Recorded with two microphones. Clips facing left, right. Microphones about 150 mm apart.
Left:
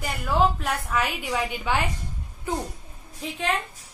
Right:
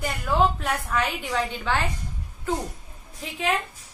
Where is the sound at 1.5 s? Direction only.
15° left (ahead or behind).